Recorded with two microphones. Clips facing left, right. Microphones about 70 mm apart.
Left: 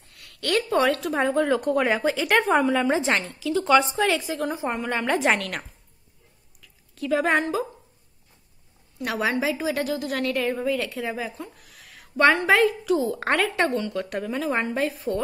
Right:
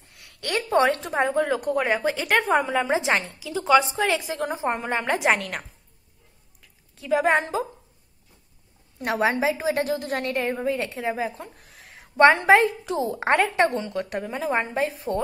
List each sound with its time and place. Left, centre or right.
0.1 s speech: right
4.7 s speech: right
7.0 s a woman's voice: centre
9.0 s a woman's voice: right